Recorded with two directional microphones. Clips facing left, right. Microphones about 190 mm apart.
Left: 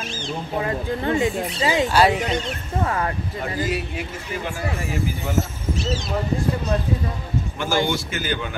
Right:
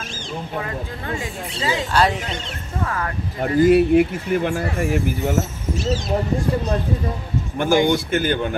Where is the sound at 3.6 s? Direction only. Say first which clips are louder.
Right 13 dB; 55° right (ahead or behind).